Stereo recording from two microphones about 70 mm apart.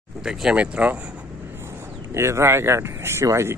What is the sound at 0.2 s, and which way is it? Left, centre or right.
Speech, centre.